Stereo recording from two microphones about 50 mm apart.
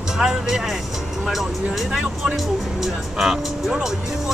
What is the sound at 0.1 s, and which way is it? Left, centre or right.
Speech, centre.